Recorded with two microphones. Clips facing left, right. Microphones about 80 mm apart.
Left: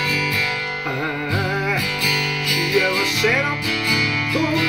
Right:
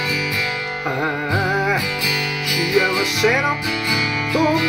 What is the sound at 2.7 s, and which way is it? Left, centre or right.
Music, centre.